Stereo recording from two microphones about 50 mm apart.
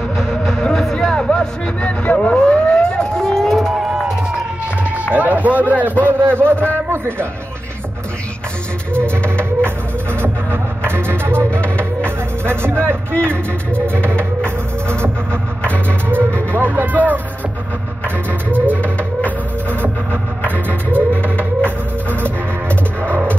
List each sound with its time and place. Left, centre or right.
0.4 s music: centre
1.8 s speech: left
2.2 s siren: left
3.2 s run: centre
5.1 s a sound: right
6.2 s a man's voice: right
10.2 s music: right
12.4 s speech: right
13.9 s music: right
16.1 s speech: right
18.8 s music: left
20.4 s music: right